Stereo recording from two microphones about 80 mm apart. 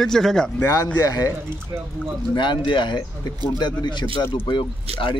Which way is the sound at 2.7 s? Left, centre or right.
Left.